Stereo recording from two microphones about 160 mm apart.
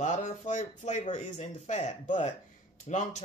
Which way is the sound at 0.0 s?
50° left (ahead or behind).